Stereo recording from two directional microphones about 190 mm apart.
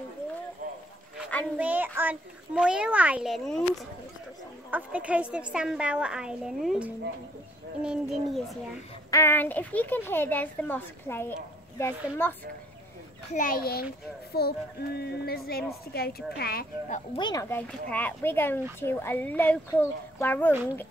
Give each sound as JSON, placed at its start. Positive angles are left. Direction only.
{"t": 1.6, "sound": "a woman's voice", "side_deg": -10}
{"t": 9.1, "sound": "speech", "side_deg": 10}
{"t": 13.3, "sound": "a woman's voice", "side_deg": 45}
{"t": 17.1, "sound": "speech", "side_deg": 25}
{"t": 17.5, "sound": "speech", "side_deg": 10}